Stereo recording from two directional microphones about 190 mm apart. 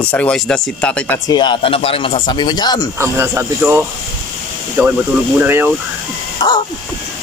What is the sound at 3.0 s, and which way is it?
Speech, 15° right (ahead or behind).